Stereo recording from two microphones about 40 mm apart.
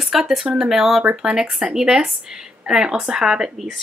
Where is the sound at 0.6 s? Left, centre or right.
Centre.